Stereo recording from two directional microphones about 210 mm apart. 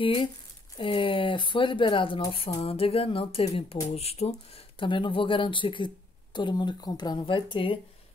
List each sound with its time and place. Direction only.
0.0 s speech: 25° left (ahead or behind)